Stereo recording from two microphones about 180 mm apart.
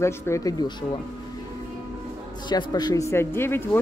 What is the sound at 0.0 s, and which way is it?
Speech, 15° left (ahead or behind).